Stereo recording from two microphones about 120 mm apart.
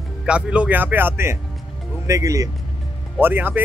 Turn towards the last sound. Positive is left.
turn(degrees=-15)  # may be behind; listen again after turning